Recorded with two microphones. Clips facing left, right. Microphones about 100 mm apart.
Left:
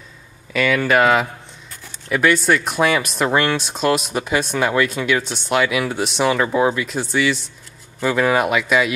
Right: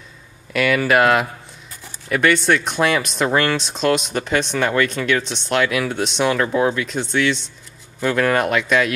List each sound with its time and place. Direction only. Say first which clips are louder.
0.5 s speech: even; 5° right (ahead or behind)